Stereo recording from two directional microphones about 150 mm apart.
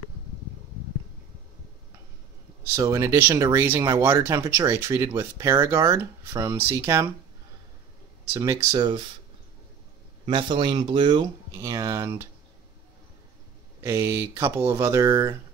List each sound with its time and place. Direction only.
2.7 s speech: 20° right (ahead or behind)
8.3 s speech: 20° right (ahead or behind)
10.2 s speech: 35° right (ahead or behind)
11.5 s speech: 20° right (ahead or behind)
13.8 s speech: 20° right (ahead or behind)